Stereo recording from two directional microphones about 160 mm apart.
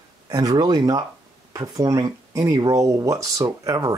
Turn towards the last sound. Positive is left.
turn(degrees=-25)  # may be behind; listen again after turning